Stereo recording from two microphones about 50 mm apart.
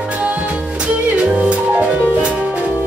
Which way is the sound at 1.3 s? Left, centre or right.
Right.